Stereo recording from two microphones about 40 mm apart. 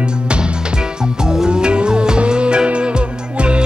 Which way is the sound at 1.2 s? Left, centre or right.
Centre.